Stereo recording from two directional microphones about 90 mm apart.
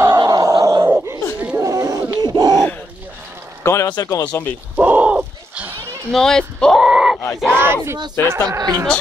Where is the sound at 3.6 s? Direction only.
25° left (ahead or behind).